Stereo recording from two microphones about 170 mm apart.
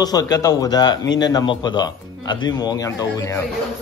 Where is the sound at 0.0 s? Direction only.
25° left (ahead or behind).